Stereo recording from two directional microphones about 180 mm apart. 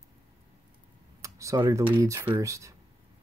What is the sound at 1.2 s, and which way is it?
Speech, 15° right (ahead or behind).